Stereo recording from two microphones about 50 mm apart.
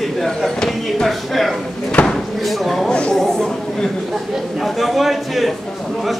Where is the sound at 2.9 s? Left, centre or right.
Centre.